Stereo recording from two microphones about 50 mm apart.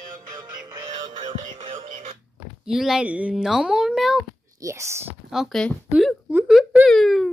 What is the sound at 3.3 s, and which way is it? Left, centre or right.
Speech, centre.